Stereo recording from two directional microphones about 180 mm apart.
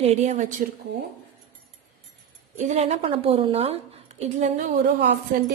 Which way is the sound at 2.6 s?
40° right (ahead or behind).